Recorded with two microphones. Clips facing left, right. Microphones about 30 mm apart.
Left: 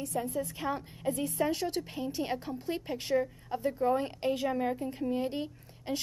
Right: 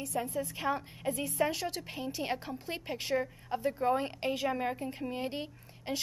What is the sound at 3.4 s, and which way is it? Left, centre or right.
A woman's voice, centre.